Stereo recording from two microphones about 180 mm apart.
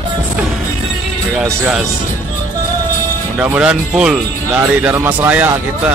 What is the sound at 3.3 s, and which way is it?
Speech, 5° right (ahead or behind).